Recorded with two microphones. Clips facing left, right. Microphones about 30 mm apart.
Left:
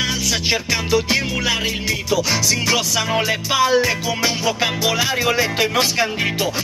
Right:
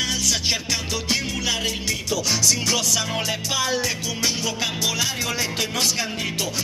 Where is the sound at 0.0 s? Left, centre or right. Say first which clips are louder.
Left 3 dB; centre.